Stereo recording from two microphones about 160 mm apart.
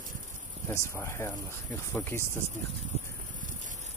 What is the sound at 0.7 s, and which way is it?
Cricket, 15° left (ahead or behind).